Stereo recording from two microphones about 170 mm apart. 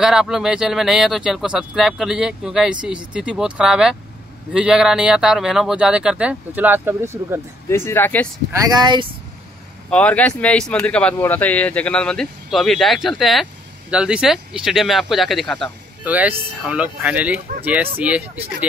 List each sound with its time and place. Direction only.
0.0 s speech: 5° right (ahead or behind)
7.7 s speech: 15° left (ahead or behind)
8.5 s speech: 25° right (ahead or behind)
9.8 s speech: 10° left (ahead or behind)
16.0 s speech: 10° right (ahead or behind)